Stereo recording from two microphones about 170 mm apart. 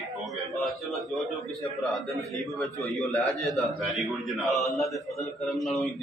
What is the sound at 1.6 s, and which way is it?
A man's voice, centre (ahead or behind).